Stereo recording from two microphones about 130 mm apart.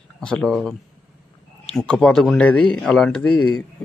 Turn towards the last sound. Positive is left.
turn(degrees=5)  # may be behind; listen again after turning